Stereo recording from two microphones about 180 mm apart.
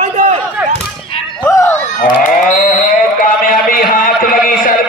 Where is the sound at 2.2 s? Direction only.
45° left (ahead or behind).